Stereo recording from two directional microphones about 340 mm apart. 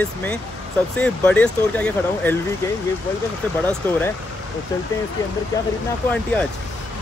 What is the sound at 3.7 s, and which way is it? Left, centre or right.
Speech, centre.